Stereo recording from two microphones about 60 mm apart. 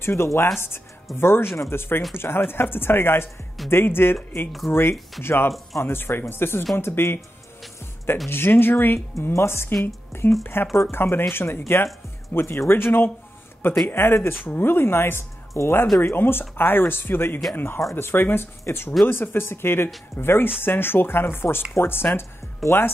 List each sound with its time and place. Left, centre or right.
0.0 s a woman's voice: left
8.3 s speech: left
9.3 s a woman's voice: left